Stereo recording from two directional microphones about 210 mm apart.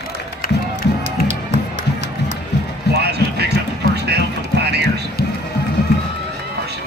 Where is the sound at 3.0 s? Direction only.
50° right (ahead or behind).